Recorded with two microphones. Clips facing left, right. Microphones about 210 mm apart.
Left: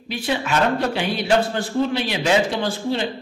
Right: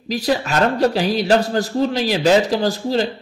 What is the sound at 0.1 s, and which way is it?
Speech, 40° right (ahead or behind).